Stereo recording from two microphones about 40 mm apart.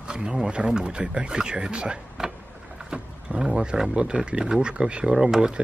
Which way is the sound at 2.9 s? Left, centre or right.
Right.